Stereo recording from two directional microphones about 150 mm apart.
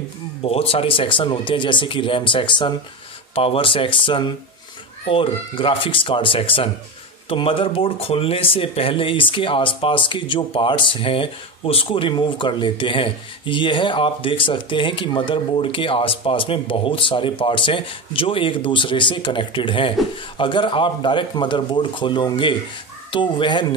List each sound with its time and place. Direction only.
0.4 s speech: 40° left (ahead or behind)